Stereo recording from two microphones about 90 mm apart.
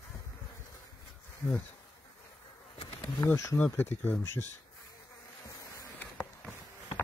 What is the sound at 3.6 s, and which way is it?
Speech, 20° left (ahead or behind).